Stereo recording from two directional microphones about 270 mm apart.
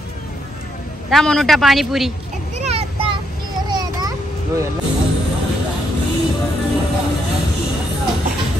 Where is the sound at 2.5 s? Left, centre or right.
Right.